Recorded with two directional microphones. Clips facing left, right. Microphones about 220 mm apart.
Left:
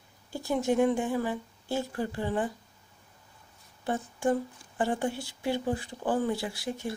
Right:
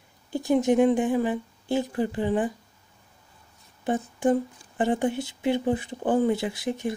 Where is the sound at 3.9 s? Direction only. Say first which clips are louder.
Right 5 dB; 20° right (ahead or behind).